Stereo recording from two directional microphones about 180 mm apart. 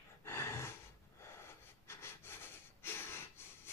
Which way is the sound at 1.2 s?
15° left (ahead or behind).